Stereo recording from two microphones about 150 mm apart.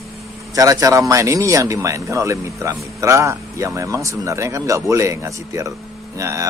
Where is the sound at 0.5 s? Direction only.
25° right (ahead or behind).